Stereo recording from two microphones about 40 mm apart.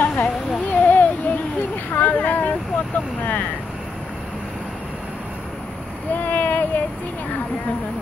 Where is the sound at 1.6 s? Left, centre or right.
Left.